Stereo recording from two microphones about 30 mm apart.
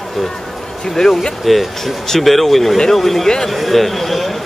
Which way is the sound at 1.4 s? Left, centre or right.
Centre.